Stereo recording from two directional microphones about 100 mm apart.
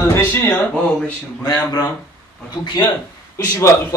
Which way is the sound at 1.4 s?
40° left (ahead or behind).